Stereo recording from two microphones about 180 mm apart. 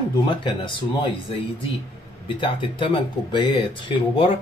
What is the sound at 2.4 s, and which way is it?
Speech, 25° left (ahead or behind).